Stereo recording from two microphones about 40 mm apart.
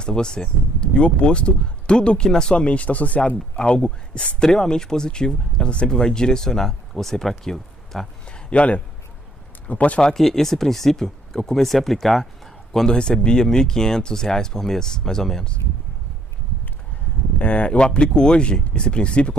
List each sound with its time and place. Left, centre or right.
0.0 s speech: centre
2.5 s speech: left
3.2 s speech: left
4.4 s speech: centre
8.3 s a sound: left
9.7 s speech: left
10.1 s speech: centre
12.7 s speech: centre
17.4 s speech: left